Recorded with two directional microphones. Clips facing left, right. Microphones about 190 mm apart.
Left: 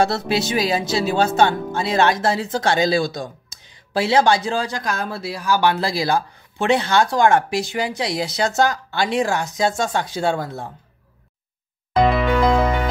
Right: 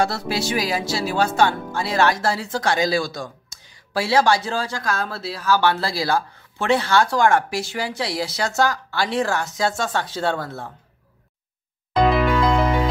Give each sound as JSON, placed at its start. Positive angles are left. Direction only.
{"t": 0.0, "sound": "speech", "side_deg": 25}
{"t": 11.9, "sound": "music", "side_deg": 0}